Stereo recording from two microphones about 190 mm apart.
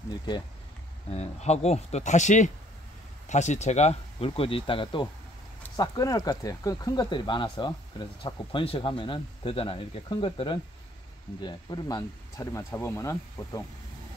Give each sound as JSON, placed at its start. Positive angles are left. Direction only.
{"t": 1.1, "sound": "speech", "side_deg": 35}